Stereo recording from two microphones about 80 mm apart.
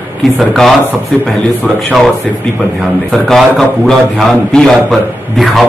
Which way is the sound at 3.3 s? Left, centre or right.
Centre.